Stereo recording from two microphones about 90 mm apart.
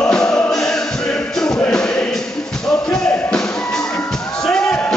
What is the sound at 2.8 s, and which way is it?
Music, 10° left (ahead or behind).